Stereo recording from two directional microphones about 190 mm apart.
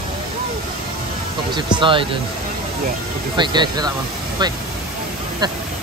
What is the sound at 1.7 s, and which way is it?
Speech, 25° right (ahead or behind).